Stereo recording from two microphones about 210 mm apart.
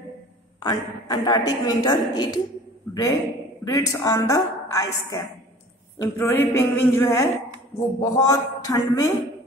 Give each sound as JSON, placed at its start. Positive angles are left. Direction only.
{"t": 0.6, "sound": "a woman's voice", "side_deg": 20}
{"t": 2.9, "sound": "a sound", "side_deg": 15}
{"t": 3.6, "sound": "a woman's voice", "side_deg": 15}